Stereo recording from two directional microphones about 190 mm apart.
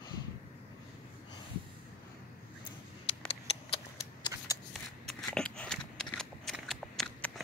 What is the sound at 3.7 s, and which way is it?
Shuffling cards, 20° left (ahead or behind).